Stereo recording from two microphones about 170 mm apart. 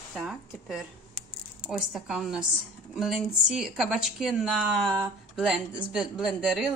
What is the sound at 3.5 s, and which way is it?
Speech, 5° right (ahead or behind).